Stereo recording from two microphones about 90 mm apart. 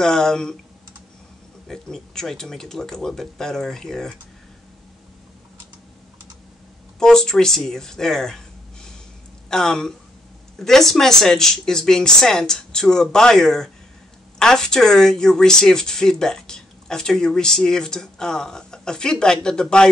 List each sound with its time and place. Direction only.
0.0 s speech: 5° left (ahead or behind)
1.7 s speech: 5° left (ahead or behind)
7.0 s speech: 5° left (ahead or behind)
9.5 s speech: 5° left (ahead or behind)